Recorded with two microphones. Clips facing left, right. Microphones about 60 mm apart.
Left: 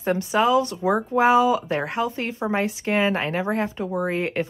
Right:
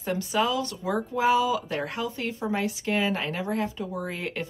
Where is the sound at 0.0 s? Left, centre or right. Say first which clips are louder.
Left 5 dB; left.